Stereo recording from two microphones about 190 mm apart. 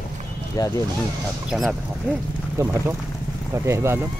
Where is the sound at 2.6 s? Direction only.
15° right (ahead or behind).